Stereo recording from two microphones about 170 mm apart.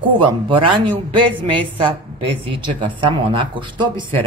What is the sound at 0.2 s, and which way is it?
A man's voice, 30° right (ahead or behind).